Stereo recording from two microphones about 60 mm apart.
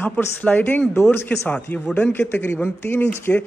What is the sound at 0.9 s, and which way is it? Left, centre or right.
Speech, left.